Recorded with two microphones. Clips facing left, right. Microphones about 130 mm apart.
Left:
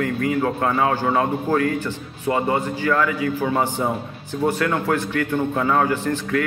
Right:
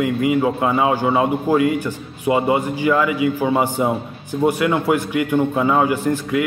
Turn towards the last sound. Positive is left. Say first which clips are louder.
# right 3 dB
turn(degrees=-10)  # may be behind; listen again after turning